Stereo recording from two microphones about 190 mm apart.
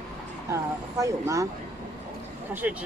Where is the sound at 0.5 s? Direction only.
15° right (ahead or behind).